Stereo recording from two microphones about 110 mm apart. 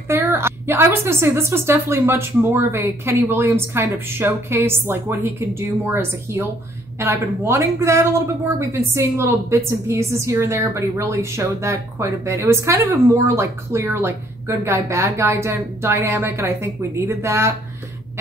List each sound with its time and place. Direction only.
0.1 s speech: 20° right (ahead or behind)